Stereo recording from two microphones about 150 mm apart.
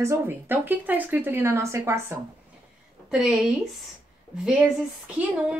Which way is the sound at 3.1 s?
5° right (ahead or behind).